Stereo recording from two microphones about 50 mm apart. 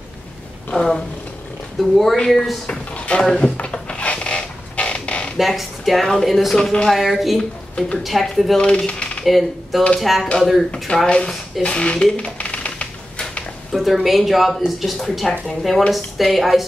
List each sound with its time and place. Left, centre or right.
0.7 s speech: centre
2.1 s speech: centre
2.9 s a sound: left
5.4 s speech: centre
6.9 s speech: centre
7.3 s speech: left
8.0 s speech: centre
8.5 s coin: centre
9.2 s speech: centre
10.9 s speech: left
13.7 s a woman's voice: centre